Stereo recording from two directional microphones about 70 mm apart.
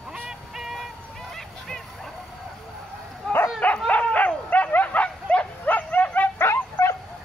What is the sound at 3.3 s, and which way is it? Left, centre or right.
Dog, centre.